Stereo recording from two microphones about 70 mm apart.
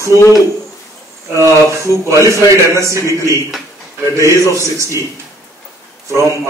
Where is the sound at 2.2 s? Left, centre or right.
Right.